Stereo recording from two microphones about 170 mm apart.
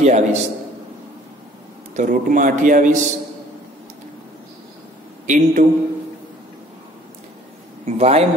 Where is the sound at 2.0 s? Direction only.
50° right (ahead or behind).